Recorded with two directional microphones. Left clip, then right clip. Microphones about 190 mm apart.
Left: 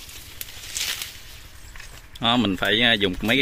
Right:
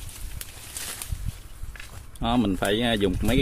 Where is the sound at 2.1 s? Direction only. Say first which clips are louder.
Left 4 dB; 5° right (ahead or behind).